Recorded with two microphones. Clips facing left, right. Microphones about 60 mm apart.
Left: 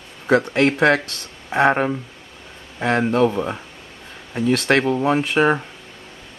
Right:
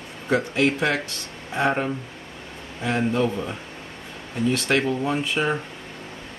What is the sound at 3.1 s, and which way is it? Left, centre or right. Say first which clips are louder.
Speech: left 5 dB; left.